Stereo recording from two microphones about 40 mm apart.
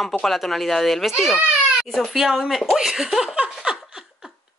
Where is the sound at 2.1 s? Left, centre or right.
Centre.